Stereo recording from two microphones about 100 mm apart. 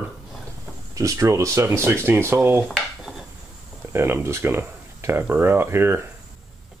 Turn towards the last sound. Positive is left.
turn(degrees=-25)  # may be behind; listen again after turning